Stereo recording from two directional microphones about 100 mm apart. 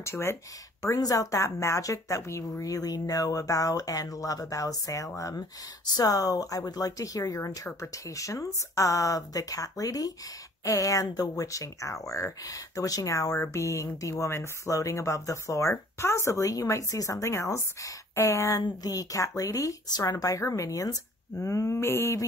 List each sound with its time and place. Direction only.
0.0 s speech: 25° left (ahead or behind)